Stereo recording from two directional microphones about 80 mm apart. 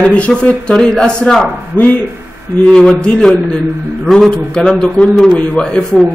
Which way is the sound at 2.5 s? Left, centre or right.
Centre.